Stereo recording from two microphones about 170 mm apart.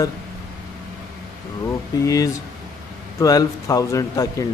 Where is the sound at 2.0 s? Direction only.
20° left (ahead or behind).